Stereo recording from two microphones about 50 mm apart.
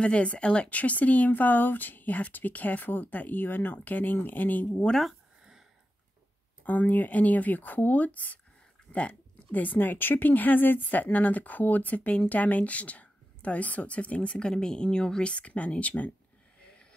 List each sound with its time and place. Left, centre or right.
0.0 s speech: left
6.6 s speech: left
14.5 s speech: centre